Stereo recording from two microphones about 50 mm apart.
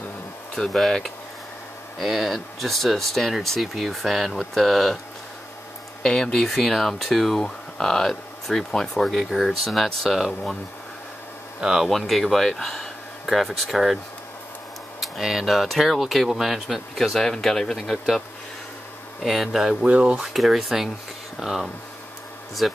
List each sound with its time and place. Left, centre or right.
0.6 s speech: centre
6.0 s speech: centre
7.3 s speech: centre
11.6 s speech: centre
11.9 s speech: centre
15.0 s speech: centre
19.2 s speech: centre
19.8 s speech: right
20.3 s speech: centre